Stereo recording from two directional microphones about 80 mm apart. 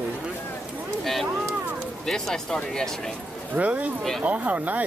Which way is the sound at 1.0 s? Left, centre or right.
Centre.